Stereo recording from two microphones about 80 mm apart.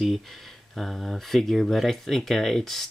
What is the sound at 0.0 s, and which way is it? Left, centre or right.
Speech, centre.